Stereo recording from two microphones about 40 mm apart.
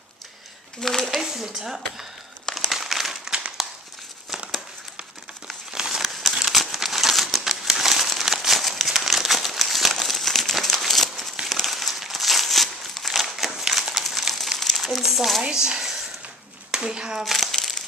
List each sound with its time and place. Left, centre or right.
0.8 s speech: centre
1.1 s speech: centre
2.7 s crumpling: centre
3.3 s crumpling: right
5.7 s crumpling: centre
6.4 s crumpling: centre
14.6 s a sound: centre
15.4 s a sound: centre
16.7 s speech: right
17.2 s crumpling: centre